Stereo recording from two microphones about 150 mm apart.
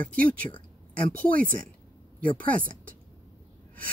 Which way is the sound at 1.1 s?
70° right (ahead or behind).